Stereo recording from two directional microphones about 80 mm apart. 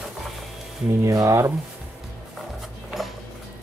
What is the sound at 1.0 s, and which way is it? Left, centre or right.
Speech, right.